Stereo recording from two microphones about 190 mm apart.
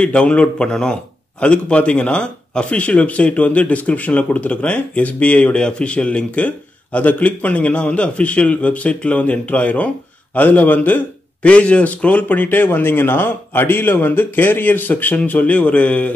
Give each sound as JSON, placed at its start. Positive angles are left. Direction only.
{"t": 0.0, "sound": "a man's voice", "side_deg": 5}